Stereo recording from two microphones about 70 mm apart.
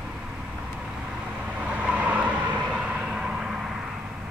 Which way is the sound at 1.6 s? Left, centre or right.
Centre.